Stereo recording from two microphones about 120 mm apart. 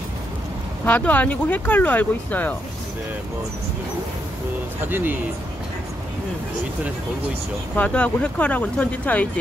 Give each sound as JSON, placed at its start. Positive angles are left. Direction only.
{"t": 0.8, "sound": "speech", "side_deg": 15}
{"t": 4.8, "sound": "speech", "side_deg": -15}
{"t": 7.7, "sound": "speech", "side_deg": 10}